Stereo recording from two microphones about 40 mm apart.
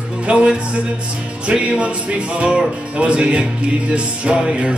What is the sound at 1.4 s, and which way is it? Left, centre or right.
Music, right.